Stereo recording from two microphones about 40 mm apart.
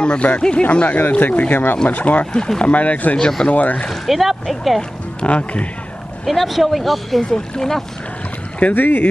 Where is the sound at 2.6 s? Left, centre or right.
Left.